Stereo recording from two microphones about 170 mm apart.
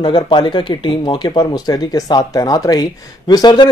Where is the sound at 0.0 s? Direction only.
25° left (ahead or behind).